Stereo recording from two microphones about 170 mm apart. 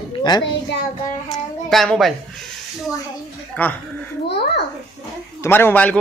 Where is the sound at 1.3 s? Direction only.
Centre (ahead or behind).